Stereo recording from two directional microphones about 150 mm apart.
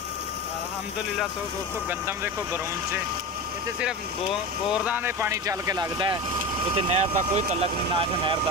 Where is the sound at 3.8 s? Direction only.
5° right (ahead or behind); by 6.1 s 30° right (ahead or behind).